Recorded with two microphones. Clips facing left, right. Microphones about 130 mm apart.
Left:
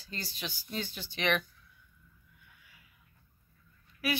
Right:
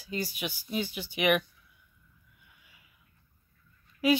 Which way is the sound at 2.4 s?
20° right (ahead or behind).